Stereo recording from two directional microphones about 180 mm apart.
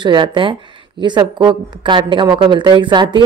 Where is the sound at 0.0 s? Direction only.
25° right (ahead or behind).